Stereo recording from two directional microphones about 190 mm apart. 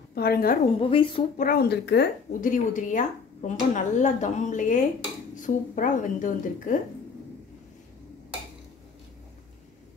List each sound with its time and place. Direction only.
0.1 s a woman's voice: 55° left (ahead or behind)
0.7 s speech: 30° left (ahead or behind)
1.4 s speech: 55° left (ahead or behind)
2.4 s a woman's voice: 40° left (ahead or behind)